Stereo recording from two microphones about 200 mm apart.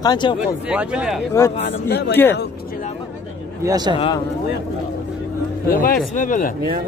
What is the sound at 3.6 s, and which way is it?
Speech, 20° right (ahead or behind).